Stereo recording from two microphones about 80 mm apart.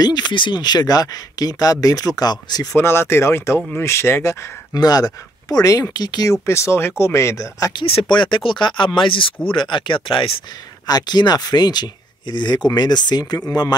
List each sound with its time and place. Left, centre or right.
0.0 s speech: left
2.7 s speech: left
4.7 s speech: left
6.4 s speech: left
7.7 s speech: left
10.9 s speech: left